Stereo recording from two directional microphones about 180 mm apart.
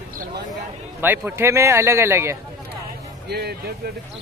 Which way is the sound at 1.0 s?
10° right (ahead or behind).